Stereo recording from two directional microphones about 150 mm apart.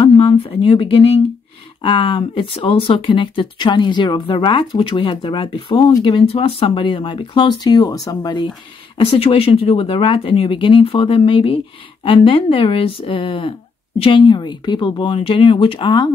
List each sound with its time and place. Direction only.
0.0 s speech: 35° left (ahead or behind)